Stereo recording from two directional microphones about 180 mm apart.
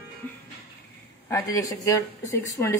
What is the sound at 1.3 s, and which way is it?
Speech, 20° left (ahead or behind).